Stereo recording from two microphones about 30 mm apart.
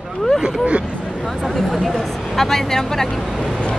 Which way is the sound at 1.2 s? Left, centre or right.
Centre.